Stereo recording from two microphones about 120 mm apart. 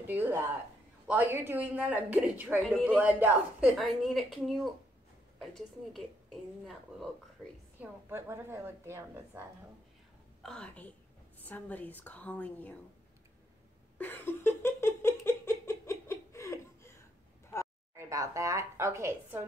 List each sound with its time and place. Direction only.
0.0 s a woman's voice: 15° right (ahead or behind)
3.7 s a woman's voice: centre (ahead or behind)
5.9 s a woman's voice: centre (ahead or behind)
7.8 s a woman's voice: 20° right (ahead or behind)
10.4 s a woman's voice: 5° left (ahead or behind)
13.9 s giggle: 15° left (ahead or behind)
17.9 s a woman's voice: 25° right (ahead or behind)